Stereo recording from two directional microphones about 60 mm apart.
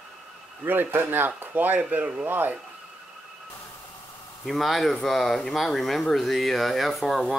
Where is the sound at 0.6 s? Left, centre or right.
Right.